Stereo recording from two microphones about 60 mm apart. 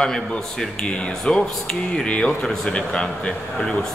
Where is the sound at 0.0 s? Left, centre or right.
Centre.